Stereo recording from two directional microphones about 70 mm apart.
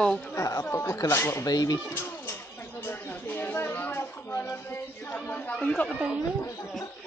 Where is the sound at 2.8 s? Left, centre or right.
Left.